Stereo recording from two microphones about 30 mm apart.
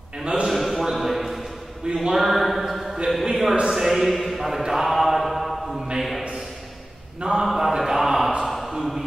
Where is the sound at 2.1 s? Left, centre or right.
Centre.